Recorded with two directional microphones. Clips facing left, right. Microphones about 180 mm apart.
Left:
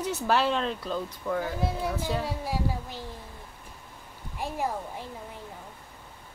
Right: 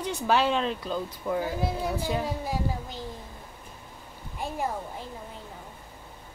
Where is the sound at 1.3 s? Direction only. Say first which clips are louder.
Right 1 dB; 15° right (ahead or behind).